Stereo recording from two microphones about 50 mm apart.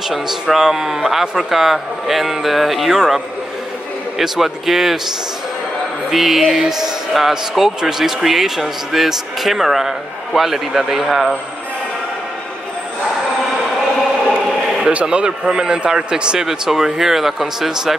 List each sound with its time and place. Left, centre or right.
0.1 s speech: centre
4.2 s speech: centre
6.0 s speech: centre
14.3 s a sound: right
15.0 s a man's voice: centre